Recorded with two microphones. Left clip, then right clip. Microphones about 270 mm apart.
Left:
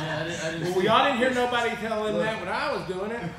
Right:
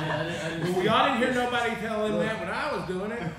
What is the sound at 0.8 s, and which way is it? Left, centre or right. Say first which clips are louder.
A man's voice: left 2 dB; left.